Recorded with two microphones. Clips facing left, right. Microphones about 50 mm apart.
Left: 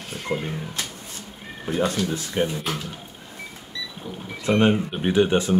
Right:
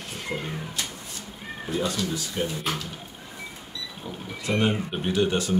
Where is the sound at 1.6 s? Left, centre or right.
Left.